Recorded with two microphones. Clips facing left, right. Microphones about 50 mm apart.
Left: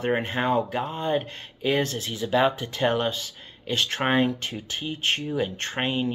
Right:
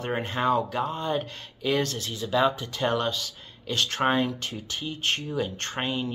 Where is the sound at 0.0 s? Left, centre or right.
Left.